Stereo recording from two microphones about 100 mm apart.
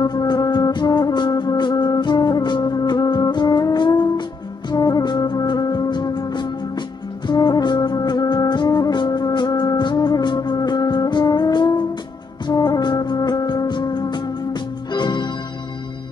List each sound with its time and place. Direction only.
0.0 s music: 45° left (ahead or behind)